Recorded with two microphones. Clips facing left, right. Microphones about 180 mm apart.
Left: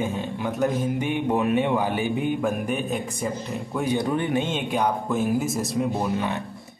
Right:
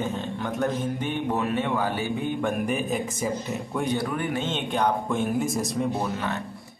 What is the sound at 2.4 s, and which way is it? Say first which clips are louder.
Speech: left 1 dB; centre (ahead or behind).